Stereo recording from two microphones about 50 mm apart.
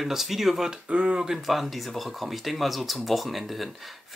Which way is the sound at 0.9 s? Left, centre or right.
Right.